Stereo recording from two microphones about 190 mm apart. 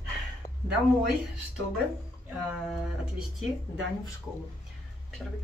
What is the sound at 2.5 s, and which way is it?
Speech, 5° right (ahead or behind).